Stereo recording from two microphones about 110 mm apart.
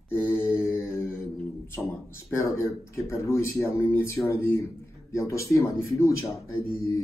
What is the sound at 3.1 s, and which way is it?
Speech, 25° left (ahead or behind).